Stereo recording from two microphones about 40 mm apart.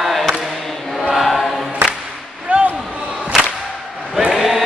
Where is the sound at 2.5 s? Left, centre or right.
Right.